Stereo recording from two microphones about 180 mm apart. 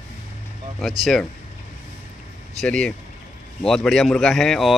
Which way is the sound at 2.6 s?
5° left (ahead or behind).